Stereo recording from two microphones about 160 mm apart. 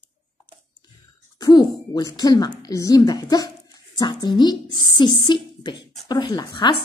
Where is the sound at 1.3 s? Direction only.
25° left (ahead or behind).